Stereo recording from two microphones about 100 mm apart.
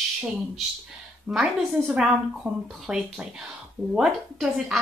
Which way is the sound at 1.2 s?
10° right (ahead or behind).